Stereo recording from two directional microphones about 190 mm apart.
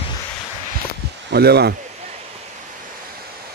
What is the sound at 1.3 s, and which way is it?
Speech, 55° right (ahead or behind).